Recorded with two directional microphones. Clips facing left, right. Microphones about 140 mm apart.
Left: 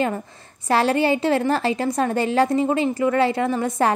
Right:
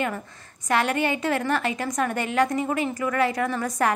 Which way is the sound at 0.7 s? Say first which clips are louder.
Left 5 dB; 30° left (ahead or behind).